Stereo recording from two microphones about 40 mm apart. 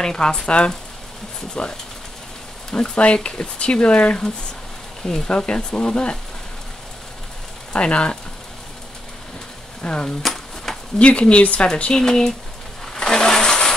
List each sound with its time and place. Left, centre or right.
0.0 s speech: centre
5.0 s speech: centre
7.7 s speech: left
9.8 s speech: left
10.2 s a sound: centre
11.0 s speech: left
11.9 s speech: centre
12.9 s vehicle: centre